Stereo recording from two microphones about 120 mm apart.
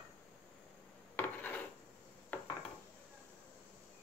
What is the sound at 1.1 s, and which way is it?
Dishes, 15° left (ahead or behind).